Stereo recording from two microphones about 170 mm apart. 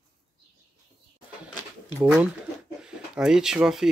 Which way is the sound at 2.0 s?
5° right (ahead or behind).